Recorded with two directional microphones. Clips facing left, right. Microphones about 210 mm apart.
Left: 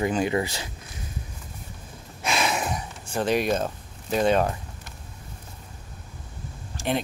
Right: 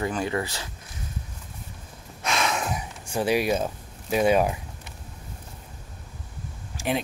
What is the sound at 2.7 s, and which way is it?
Speech, 10° right (ahead or behind).